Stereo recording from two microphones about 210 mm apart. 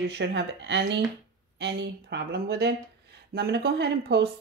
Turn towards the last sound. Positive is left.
turn(degrees=-55)  # may be behind; listen again after turning